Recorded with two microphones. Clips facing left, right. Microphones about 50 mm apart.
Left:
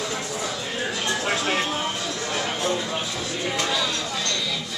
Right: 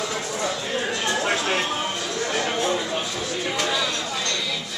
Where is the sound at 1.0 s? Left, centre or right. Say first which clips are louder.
Even; centre.